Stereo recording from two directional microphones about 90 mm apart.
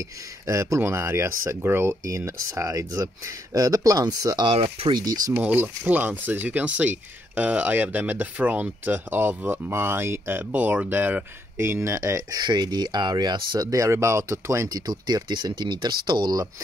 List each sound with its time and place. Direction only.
0.5 s speech: 35° right (ahead or behind)
4.5 s speech: 80° right
5.3 s speech: 20° right (ahead or behind); by 13.7 s 50° right (ahead or behind)
13.7 s speech: 35° right (ahead or behind)
14.9 s speech: 50° right (ahead or behind)